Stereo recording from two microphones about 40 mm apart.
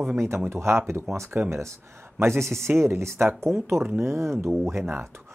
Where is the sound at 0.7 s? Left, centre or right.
Right.